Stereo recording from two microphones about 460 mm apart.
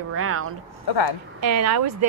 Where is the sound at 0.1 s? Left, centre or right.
Right.